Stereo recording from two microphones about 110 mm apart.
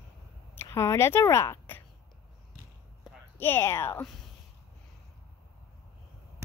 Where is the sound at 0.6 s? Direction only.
30° left (ahead or behind).